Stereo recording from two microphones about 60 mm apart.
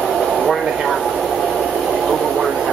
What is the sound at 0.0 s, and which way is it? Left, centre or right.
Air conditioning, centre.